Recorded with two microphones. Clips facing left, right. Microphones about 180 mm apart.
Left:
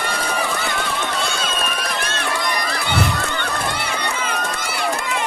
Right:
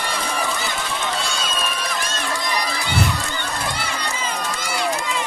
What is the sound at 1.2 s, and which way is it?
Run, 60° left (ahead or behind).